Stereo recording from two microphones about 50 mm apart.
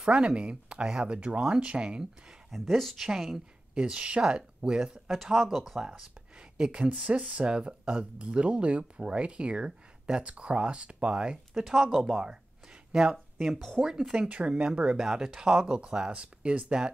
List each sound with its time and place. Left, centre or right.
0.0 s speech: centre
1.1 s speech: right
2.5 s speech: centre
3.7 s speech: centre
5.9 s speech: centre
11.5 s speech: centre
12.1 s speech: centre
13.4 s speech: centre
13.7 s speech: centre
14.0 s speech: centre; by 16.7 s right